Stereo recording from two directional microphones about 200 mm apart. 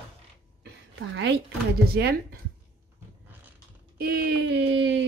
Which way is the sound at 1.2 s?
60° right (ahead or behind).